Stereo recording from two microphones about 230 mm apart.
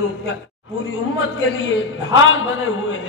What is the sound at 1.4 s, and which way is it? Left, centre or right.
A man's voice, left.